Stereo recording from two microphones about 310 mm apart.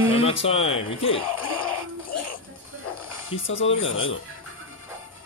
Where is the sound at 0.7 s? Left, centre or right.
Left.